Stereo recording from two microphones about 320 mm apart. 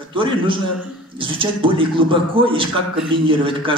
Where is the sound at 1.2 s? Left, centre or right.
Centre.